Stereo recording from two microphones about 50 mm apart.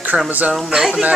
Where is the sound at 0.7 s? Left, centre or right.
Centre.